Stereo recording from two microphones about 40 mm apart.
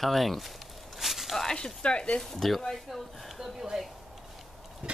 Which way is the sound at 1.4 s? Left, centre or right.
Centre.